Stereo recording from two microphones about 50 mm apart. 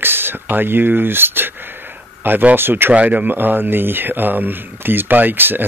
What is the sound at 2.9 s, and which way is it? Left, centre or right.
Speech, right.